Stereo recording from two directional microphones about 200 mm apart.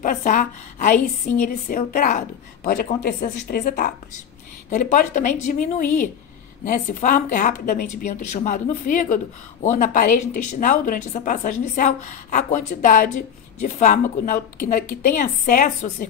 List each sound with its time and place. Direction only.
0.0 s a woman's voice: 40° left (ahead or behind)